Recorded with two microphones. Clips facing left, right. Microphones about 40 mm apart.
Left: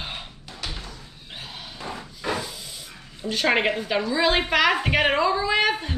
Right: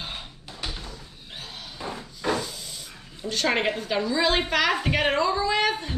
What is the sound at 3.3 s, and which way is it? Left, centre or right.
Speech, centre.